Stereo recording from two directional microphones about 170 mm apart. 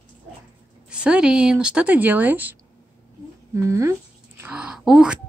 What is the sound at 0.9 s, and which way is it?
A woman's voice, 5° right (ahead or behind).